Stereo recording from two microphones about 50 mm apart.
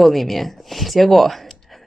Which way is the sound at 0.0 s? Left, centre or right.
Centre.